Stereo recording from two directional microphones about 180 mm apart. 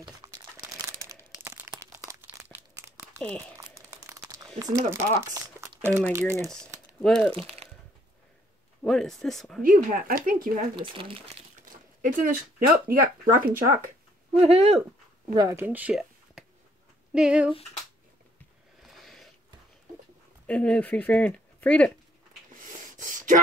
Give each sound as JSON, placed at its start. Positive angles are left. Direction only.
{"t": 0.0, "sound": "crumpling", "side_deg": -20}
{"t": 3.2, "sound": "speech", "side_deg": 5}
{"t": 3.5, "sound": "crumpling", "side_deg": -15}
{"t": 4.8, "sound": "speech", "side_deg": -15}
{"t": 6.3, "sound": "speech", "side_deg": 0}
{"t": 8.8, "sound": "speech", "side_deg": 0}
{"t": 9.6, "sound": "speech", "side_deg": -50}
{"t": 10.8, "sound": "speech", "side_deg": -30}
{"t": 12.0, "sound": "speech", "side_deg": -50}
{"t": 14.3, "sound": "speech", "side_deg": -35}
{"t": 15.3, "sound": "speech", "side_deg": -15}
{"t": 18.8, "sound": "a sound", "side_deg": 0}
{"t": 20.4, "sound": "speech", "side_deg": 5}
{"t": 22.6, "sound": "gasp", "side_deg": -50}